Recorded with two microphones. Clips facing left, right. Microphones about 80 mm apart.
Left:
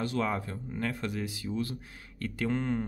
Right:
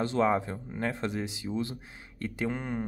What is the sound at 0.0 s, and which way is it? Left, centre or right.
Speech, right.